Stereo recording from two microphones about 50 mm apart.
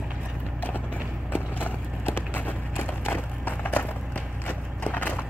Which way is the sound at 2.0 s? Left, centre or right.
Left.